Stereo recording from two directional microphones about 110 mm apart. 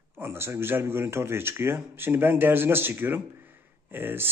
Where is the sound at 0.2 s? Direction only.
20° right (ahead or behind).